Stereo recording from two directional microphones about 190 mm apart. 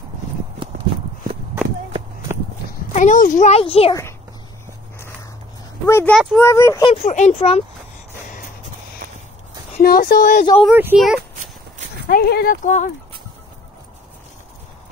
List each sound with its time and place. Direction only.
2.9 s a child's voice: 40° left (ahead or behind)
5.9 s speech: 15° left (ahead or behind)
6.9 s a child's voice: 35° left (ahead or behind)
9.8 s a woman's voice: 55° left (ahead or behind)
10.6 s speech: 10° right (ahead or behind)
12.1 s a woman's voice: 55° left (ahead or behind)
12.6 s a child's voice: 40° left (ahead or behind)